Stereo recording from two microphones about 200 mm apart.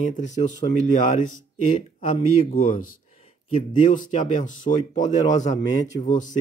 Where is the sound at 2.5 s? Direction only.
45° left (ahead or behind).